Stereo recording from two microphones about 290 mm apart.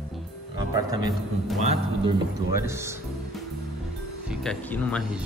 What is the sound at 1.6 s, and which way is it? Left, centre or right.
Speech, right.